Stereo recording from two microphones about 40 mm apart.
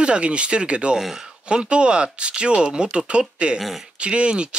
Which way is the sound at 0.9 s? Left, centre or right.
Centre.